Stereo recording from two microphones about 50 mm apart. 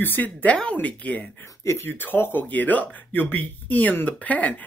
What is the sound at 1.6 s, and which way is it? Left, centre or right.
Speech, left.